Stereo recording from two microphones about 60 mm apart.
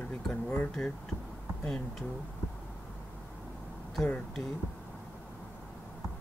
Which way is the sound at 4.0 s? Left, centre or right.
Centre.